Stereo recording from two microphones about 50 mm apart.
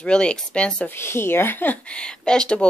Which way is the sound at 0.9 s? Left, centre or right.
Left.